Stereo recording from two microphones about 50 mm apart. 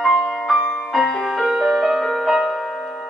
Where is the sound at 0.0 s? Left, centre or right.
Centre.